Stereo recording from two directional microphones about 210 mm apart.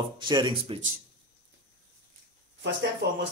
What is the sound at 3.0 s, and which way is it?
Speech, 55° right (ahead or behind).